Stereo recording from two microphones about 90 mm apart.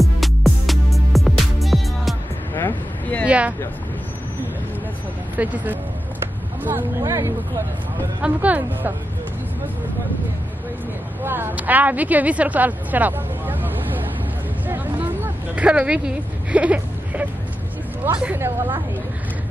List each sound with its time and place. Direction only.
0.0 s music: centre (ahead or behind)
2.5 s vehicle: 20° left (ahead or behind)
3.3 s a sound: 15° right (ahead or behind)
5.4 s speech: 20° right (ahead or behind)
7.0 s speech: 35° right (ahead or behind)
8.2 s speech: 15° right (ahead or behind)
11.2 s a woman's voice: 20° right (ahead or behind)
15.5 s speech: 15° right (ahead or behind)
16.5 s a sound: 15° right (ahead or behind)
18.0 s speech: 25° right (ahead or behind)